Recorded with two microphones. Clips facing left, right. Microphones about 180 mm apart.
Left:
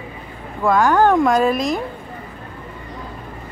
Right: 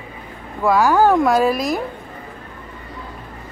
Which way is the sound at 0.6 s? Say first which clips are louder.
Even; 5° right (ahead or behind).